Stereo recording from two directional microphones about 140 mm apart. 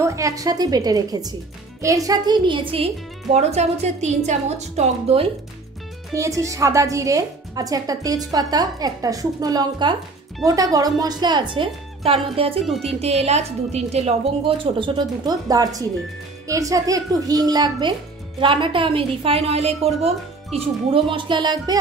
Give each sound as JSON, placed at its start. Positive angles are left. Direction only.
{"t": 0.0, "sound": "a woman's voice", "side_deg": -20}
{"t": 6.1, "sound": "a woman's voice", "side_deg": -20}
{"t": 14.6, "sound": "a woman's voice", "side_deg": -35}